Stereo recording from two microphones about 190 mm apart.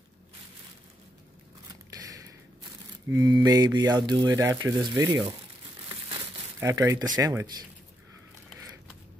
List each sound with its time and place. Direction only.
1.7 s a sound: 20° right (ahead or behind)
3.1 s speech: 20° right (ahead or behind)
6.0 s crumpling: 20° right (ahead or behind)